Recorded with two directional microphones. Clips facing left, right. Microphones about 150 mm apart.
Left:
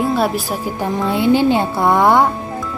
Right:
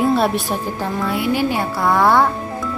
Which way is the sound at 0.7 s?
20° left (ahead or behind).